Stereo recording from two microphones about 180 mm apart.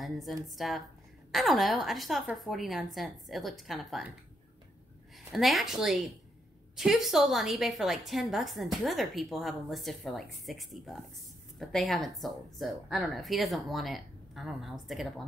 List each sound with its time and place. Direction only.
0.0 s a woman's voice: centre (ahead or behind)
5.3 s a woman's voice: centre (ahead or behind)